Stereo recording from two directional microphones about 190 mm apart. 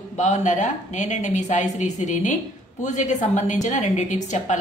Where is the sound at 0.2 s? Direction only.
40° left (ahead or behind).